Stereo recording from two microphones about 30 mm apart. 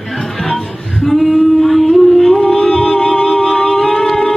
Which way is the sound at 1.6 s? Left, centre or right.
Centre.